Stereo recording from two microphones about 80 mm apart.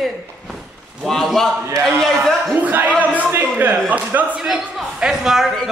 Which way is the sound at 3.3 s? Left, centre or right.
Right.